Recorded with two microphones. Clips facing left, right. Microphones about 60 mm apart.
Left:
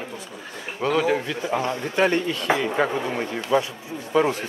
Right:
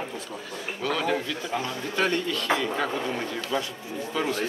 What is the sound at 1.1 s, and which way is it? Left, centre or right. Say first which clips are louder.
Speech: left 4 dB; left.